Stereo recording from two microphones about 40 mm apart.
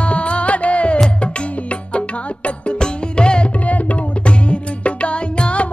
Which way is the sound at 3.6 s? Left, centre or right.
Left.